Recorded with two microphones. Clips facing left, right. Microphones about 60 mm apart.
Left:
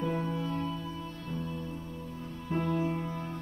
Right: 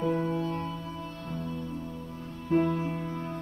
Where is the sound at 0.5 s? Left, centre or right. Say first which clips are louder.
Even; right.